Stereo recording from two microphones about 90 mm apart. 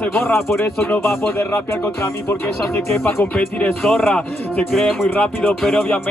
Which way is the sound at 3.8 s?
Centre (ahead or behind).